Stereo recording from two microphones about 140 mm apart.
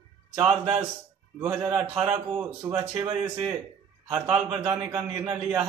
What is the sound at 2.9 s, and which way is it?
Speech, 30° right (ahead or behind).